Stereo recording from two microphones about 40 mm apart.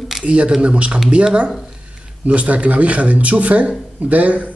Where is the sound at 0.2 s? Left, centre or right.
Right.